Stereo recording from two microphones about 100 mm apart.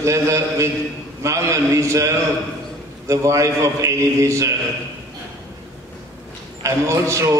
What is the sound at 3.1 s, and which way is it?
A man's voice, 30° right (ahead or behind).